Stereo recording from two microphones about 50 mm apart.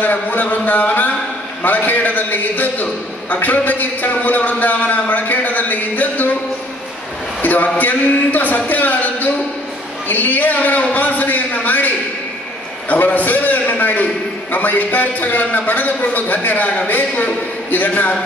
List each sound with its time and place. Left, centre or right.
0.0 s a man's voice: left
7.4 s a man's voice: left
12.9 s a man's voice: left